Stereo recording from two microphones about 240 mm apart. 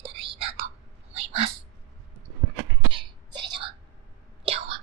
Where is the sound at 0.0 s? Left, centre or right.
Right.